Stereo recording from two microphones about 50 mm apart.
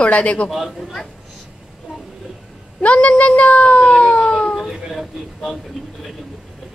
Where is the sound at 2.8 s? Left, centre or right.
Left.